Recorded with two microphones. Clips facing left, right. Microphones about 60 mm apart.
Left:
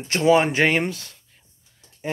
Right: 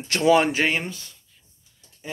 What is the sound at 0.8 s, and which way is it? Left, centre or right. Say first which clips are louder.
Speech: left 7 dB; left.